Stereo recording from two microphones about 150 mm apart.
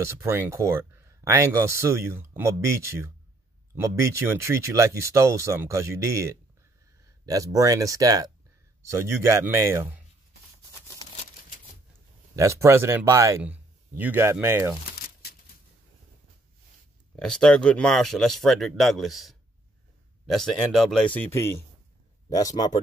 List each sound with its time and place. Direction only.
0.0 s speech: 15° right (ahead or behind)
12.4 s speech: 20° right (ahead or behind)
17.1 s speech: 5° left (ahead or behind)
20.3 s speech: centre (ahead or behind); by 22.8 s 25° left (ahead or behind)